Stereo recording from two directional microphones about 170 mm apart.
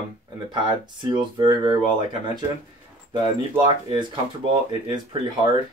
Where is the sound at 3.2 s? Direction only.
30° right (ahead or behind).